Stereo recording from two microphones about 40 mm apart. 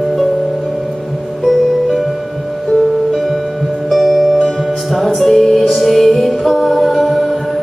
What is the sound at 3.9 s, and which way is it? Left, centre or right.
Music, centre.